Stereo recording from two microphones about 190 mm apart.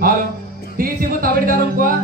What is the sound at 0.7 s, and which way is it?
Music, 50° right (ahead or behind).